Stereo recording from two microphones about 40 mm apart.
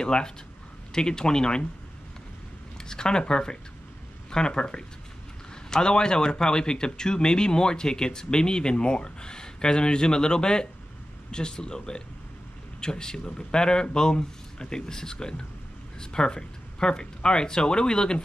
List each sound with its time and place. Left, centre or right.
0.0 s speech: left
2.9 s speech: centre